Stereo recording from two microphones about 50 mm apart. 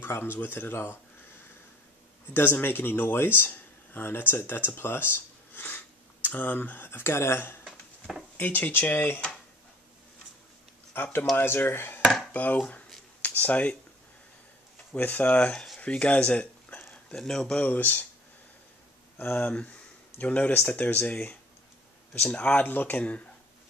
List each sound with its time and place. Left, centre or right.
0.0 s speech: left
2.3 s speech: left
6.2 s speech: left
10.9 s speech: left
12.3 s speech: left
14.9 s speech: left
17.2 s speech: centre
17.6 s speech: left
19.1 s speech: left
20.2 s speech: left